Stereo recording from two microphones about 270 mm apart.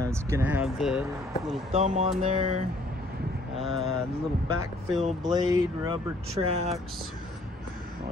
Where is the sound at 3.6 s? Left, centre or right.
Centre.